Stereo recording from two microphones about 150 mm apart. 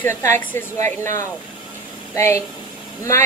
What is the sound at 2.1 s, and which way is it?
Speech, 20° left (ahead or behind).